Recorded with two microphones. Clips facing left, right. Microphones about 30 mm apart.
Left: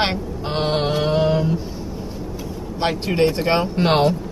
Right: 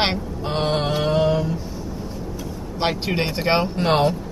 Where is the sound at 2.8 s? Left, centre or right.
Centre.